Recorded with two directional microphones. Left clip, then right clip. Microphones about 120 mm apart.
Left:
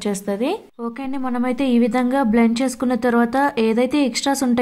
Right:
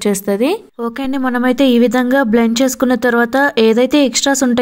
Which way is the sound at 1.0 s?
25° right (ahead or behind).